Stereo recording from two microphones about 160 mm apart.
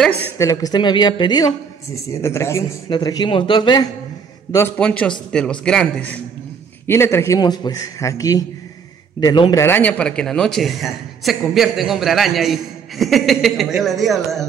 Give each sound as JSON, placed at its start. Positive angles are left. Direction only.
{"t": 0.4, "sound": "a man's voice", "side_deg": 20}
{"t": 4.7, "sound": "a man's voice", "side_deg": 5}
{"t": 9.6, "sound": "speech", "side_deg": 10}